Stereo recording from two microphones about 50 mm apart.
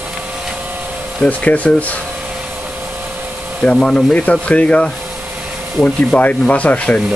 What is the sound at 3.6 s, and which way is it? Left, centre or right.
Speech, centre.